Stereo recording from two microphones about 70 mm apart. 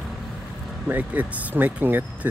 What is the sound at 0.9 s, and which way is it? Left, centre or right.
Speech, right.